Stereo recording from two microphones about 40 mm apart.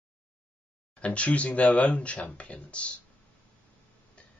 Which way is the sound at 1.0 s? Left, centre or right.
Left.